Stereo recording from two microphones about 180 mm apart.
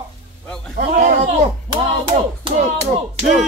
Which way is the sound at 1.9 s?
30° right (ahead or behind).